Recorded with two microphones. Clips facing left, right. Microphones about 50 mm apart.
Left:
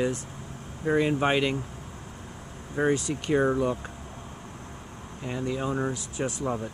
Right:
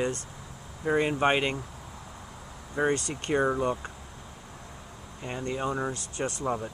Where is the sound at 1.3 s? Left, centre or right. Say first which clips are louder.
Left 2 dB; right.